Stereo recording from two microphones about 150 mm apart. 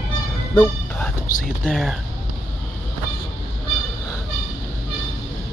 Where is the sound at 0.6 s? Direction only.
5° left (ahead or behind).